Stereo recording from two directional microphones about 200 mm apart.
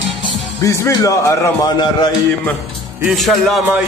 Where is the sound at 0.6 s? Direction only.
15° left (ahead or behind).